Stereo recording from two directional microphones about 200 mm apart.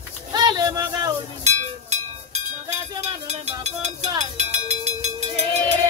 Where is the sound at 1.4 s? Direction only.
35° right (ahead or behind).